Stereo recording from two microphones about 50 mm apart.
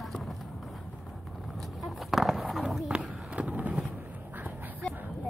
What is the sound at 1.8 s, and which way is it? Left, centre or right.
Skateboard, centre.